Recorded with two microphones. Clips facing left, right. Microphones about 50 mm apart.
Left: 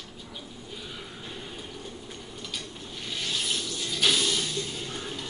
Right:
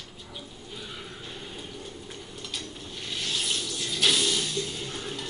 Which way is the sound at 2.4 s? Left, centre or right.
Centre.